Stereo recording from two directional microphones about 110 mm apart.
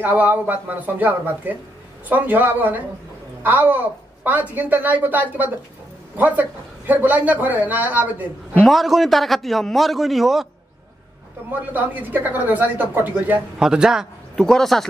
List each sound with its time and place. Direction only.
0.0 s speech: 15° right (ahead or behind)
8.6 s a man's voice: centre (ahead or behind)
11.5 s a man's voice: 15° right (ahead or behind); by 14.9 s 5° left (ahead or behind)